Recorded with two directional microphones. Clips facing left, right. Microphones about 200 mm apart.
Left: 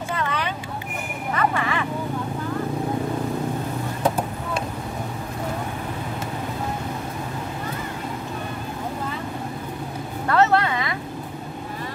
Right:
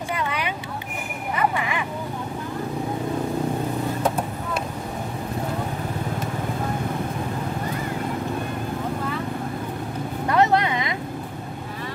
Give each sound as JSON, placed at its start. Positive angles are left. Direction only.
{"t": 0.1, "sound": "vehicle", "side_deg": -10}
{"t": 1.3, "sound": "a sound", "side_deg": -15}
{"t": 10.2, "sound": "vehicle", "side_deg": -15}